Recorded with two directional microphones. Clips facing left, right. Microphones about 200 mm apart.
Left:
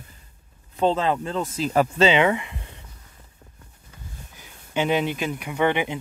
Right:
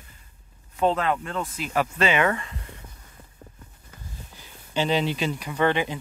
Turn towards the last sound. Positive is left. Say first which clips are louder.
# left 1 dB
turn(degrees=10)  # may be behind; listen again after turning